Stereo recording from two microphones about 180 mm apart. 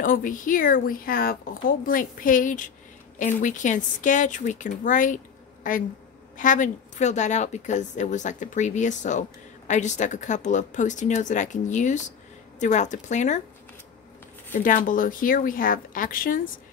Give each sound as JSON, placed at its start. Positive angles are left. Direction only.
{"t": 0.0, "sound": "a woman's voice", "side_deg": 50}
{"t": 14.5, "sound": "a woman's voice", "side_deg": 50}